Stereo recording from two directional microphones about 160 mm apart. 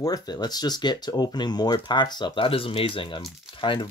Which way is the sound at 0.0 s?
25° left (ahead or behind).